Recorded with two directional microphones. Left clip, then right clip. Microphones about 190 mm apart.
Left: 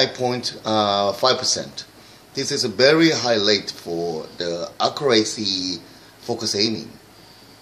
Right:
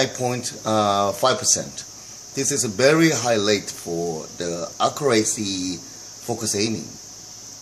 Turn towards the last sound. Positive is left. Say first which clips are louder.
# left 2 dB
turn(degrees=-25)  # may be behind; listen again after turning